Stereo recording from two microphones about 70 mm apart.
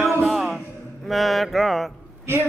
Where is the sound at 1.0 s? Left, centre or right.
Centre.